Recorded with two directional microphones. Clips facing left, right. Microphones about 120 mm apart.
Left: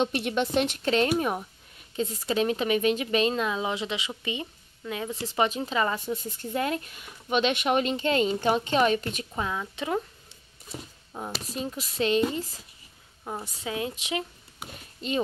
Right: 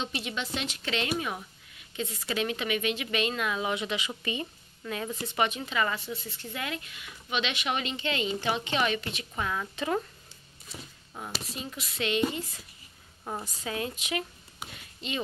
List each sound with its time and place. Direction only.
0.0 s speech: 55° left (ahead or behind); by 5.1 s 15° left (ahead or behind)
5.1 s speech: 30° left (ahead or behind)
5.9 s speech: 45° left (ahead or behind)
9.3 s a woman's voice: 25° left (ahead or behind)
9.6 s speech: 10° left (ahead or behind)
11.4 s speech: 40° left (ahead or behind)
13.2 s a woman's voice: centre (ahead or behind)
13.6 s a woman's voice: 15° left (ahead or behind)
14.7 s speech: 40° left (ahead or behind)